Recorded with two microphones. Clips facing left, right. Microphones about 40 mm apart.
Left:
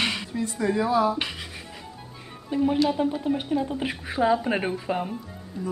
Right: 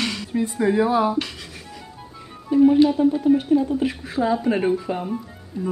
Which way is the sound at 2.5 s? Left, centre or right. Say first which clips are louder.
Right 8 dB; centre.